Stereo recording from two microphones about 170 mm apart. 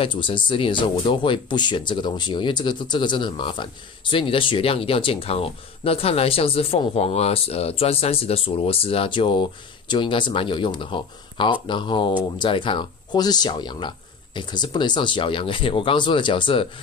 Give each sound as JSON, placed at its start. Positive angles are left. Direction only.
{"t": 0.0, "sound": "speech", "side_deg": 30}